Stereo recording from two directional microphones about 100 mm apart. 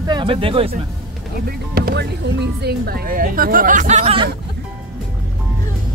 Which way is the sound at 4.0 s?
75° right (ahead or behind).